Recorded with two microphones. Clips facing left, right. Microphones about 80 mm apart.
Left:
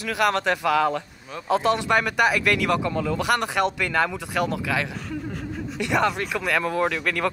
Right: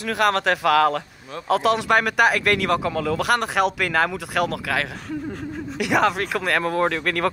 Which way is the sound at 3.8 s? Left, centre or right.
Right.